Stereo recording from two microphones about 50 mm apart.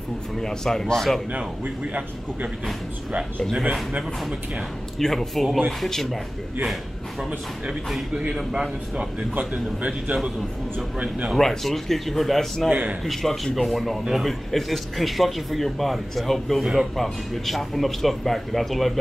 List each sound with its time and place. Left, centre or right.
0.4 s a man's voice: centre
1.3 s a man's voice: right
3.9 s speech: centre
4.9 s a man's voice: centre
8.1 s a man's voice: centre
9.3 s a man's voice: right
11.3 s speech: centre